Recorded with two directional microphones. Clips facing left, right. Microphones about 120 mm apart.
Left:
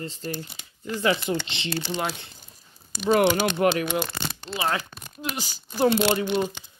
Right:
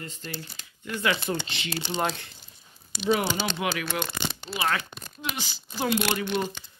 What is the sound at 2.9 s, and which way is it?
Speech, 45° left (ahead or behind).